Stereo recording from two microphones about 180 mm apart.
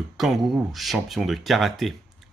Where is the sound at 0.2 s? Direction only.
Centre (ahead or behind).